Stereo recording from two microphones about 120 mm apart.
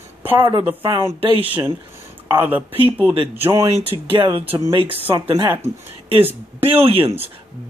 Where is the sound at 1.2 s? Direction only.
45° right (ahead or behind).